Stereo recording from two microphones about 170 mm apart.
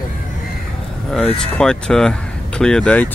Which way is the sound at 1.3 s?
5° left (ahead or behind).